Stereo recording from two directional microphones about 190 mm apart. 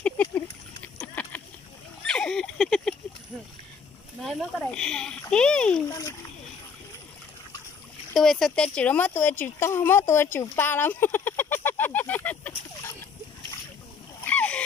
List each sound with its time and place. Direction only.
0.9 s vehicle: 10° left (ahead or behind)
2.0 s a sound: 5° left (ahead or behind)
4.2 s speech: centre (ahead or behind)
5.9 s a child's voice: 15° left (ahead or behind)
8.2 s speech: centre (ahead or behind)
14.2 s splash: 5° left (ahead or behind)